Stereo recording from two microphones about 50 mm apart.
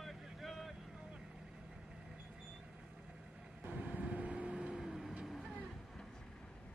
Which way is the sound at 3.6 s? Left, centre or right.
Right.